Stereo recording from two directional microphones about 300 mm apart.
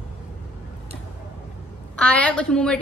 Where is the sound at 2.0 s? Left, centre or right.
Centre.